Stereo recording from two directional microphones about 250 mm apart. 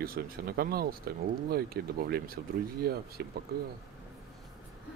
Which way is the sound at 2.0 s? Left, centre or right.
Right.